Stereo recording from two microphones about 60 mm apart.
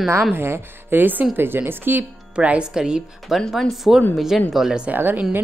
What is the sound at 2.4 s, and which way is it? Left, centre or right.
A woman's voice, centre.